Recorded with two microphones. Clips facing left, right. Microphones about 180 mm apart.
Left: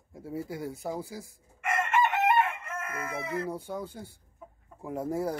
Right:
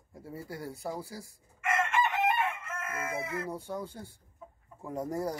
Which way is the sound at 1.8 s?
65° left (ahead or behind).